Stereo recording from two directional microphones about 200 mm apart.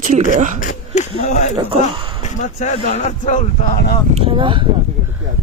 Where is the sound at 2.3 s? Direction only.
35° left (ahead or behind).